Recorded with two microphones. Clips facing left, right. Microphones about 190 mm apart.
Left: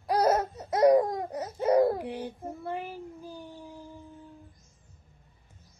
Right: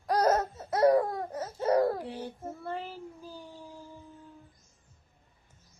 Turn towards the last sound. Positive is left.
turn(degrees=15)  # may be behind; listen again after turning